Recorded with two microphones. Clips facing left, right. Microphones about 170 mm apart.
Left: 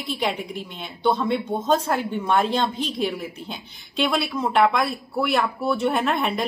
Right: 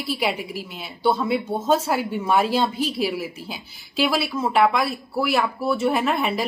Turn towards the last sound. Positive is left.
turn(degrees=0)  # may be behind; listen again after turning